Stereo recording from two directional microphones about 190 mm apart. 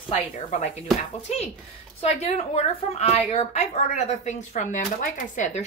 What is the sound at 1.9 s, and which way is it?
A woman's voice, 35° left (ahead or behind).